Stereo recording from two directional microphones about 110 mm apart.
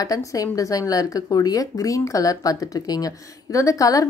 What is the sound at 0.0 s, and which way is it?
Speech, 30° left (ahead or behind).